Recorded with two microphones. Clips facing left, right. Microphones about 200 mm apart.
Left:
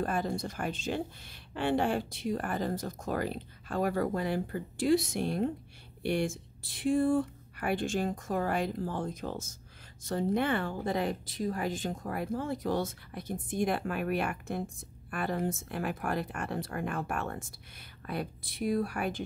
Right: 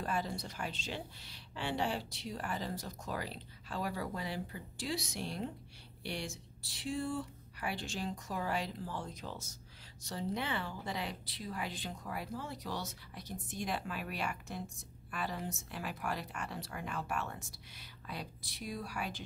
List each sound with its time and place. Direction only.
0.0 s speech: 50° left (ahead or behind)